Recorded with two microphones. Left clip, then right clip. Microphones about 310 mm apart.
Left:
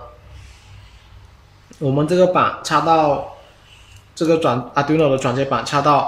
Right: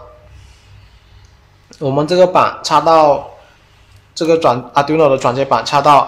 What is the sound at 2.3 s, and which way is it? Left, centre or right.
Speech, centre.